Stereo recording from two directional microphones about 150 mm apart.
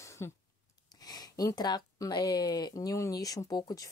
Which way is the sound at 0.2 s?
15° left (ahead or behind).